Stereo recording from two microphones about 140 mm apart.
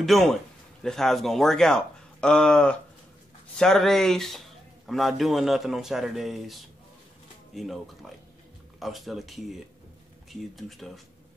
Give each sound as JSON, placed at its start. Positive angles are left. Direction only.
{"t": 0.0, "sound": "speech", "side_deg": 0}
{"t": 10.5, "sound": "speech", "side_deg": 0}